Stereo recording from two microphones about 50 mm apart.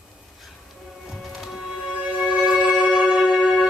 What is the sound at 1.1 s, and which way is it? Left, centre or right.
Music, centre.